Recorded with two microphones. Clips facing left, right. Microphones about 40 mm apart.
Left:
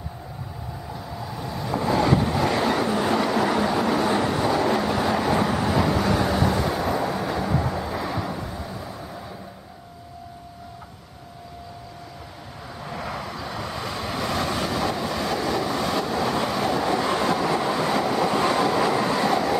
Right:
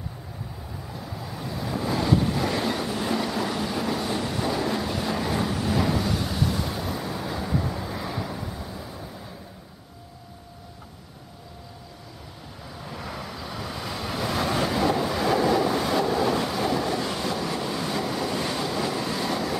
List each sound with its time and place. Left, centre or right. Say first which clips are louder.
0.9 s vehicle: left 2 dB; centre
2.0 s vehicle: left 2 dB; centre; by 4.4 s left
4.4 s vehicle: left 5 dB; centre
6.0 s vehicle: left 6 dB; left
7.1 s vehicle: left 4 dB; centre
12.8 s vehicle: left 4 dB; centre
16.8 s train: left 5 dB; left